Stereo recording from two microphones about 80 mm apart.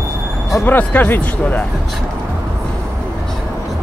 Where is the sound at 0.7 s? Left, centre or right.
Left.